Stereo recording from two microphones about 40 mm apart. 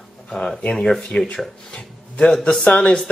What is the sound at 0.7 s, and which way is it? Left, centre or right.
Speech, centre.